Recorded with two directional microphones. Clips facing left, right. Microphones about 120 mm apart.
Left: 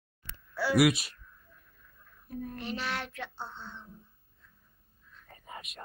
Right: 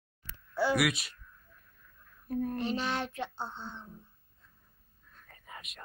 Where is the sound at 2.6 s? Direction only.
25° right (ahead or behind).